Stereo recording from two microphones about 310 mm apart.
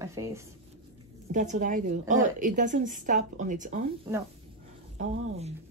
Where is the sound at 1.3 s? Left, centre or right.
Right.